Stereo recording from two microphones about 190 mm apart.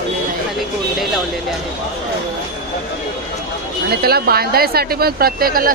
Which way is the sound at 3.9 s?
55° right (ahead or behind).